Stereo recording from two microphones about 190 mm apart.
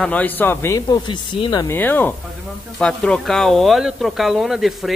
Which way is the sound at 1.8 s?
10° left (ahead or behind).